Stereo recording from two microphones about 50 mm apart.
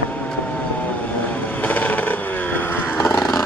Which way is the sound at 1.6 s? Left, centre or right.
Left.